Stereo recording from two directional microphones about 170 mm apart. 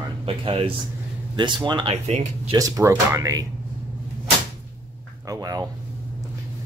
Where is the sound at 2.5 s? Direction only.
20° right (ahead or behind).